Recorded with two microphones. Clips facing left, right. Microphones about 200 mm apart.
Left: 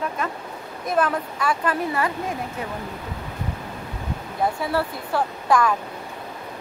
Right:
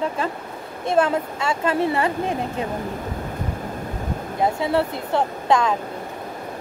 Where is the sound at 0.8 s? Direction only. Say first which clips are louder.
Right 3 dB; 25° right (ahead or behind).